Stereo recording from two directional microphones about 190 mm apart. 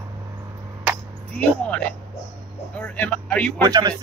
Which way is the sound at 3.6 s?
20° right (ahead or behind).